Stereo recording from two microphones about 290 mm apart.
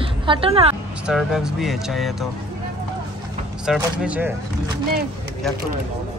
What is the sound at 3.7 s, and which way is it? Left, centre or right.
Speech, centre.